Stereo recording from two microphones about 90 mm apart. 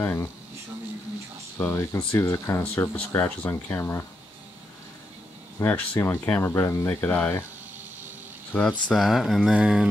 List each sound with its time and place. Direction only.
0.0 s speech: 25° left (ahead or behind)
1.6 s speech: 30° left (ahead or behind)
5.6 s speech: 25° left (ahead or behind)
6.4 s speech: 30° left (ahead or behind)
8.5 s speech: 10° left (ahead or behind); by 9.8 s 10° right (ahead or behind)